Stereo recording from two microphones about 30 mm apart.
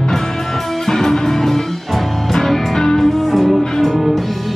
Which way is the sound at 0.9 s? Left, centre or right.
Centre.